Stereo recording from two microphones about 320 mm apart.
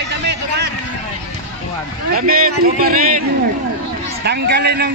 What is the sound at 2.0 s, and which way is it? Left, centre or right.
A man's voice, right.